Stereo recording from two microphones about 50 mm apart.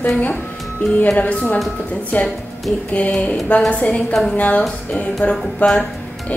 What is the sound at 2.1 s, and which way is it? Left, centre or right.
Speech, left.